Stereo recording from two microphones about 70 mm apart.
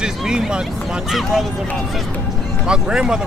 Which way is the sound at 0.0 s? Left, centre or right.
Centre.